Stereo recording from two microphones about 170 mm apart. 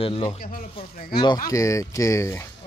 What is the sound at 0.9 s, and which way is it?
Speech, 60° left (ahead or behind).